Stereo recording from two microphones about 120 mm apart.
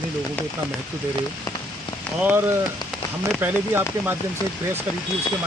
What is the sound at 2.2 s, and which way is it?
Speech, 15° right (ahead or behind).